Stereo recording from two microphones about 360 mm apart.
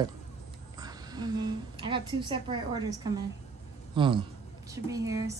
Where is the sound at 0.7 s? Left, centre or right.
Centre.